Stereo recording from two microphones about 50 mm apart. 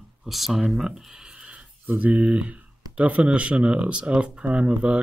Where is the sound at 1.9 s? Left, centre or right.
Right.